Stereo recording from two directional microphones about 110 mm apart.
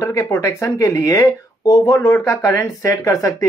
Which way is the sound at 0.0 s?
20° left (ahead or behind).